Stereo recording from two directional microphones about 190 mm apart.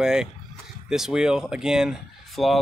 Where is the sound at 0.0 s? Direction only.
5° right (ahead or behind).